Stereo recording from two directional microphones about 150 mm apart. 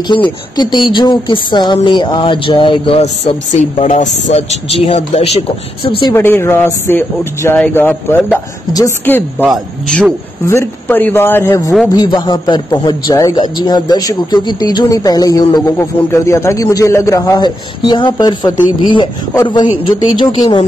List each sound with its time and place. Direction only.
0.1 s speech: 30° left (ahead or behind)
3.0 s speech: 45° left (ahead or behind)
6.1 s a man's voice: 15° left (ahead or behind)
9.5 s speech: centre (ahead or behind)
10.4 s a man's voice: 15° left (ahead or behind)
19.3 s a man's voice: 25° left (ahead or behind)